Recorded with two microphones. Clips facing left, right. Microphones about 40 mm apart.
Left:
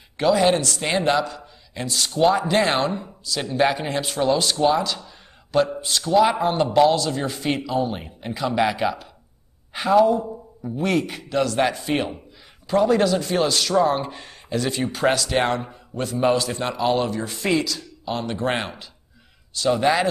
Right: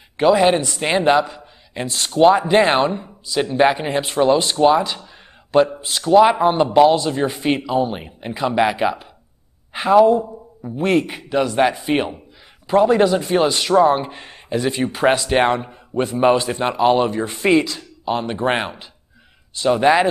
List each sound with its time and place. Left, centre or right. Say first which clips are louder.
0.2 s a man's voice: right 4 dB; right